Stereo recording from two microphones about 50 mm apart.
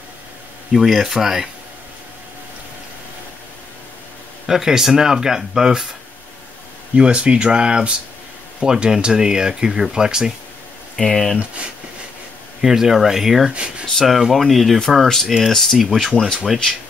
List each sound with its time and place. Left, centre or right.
0.7 s speech: centre
4.5 s speech: centre
7.0 s speech: centre
11.0 s speech: centre
12.6 s speech: centre
13.5 s speech: right
13.9 s speech: centre